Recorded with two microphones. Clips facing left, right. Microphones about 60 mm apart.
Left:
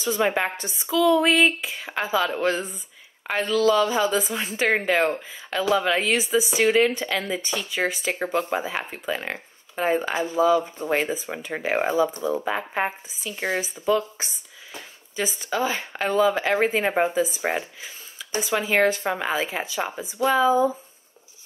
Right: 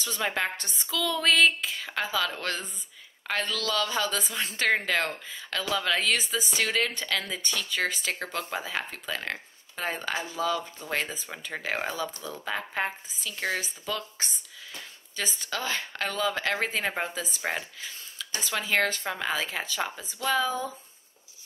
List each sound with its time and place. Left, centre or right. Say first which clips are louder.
0.0 s a woman's voice: left 7 dB; centre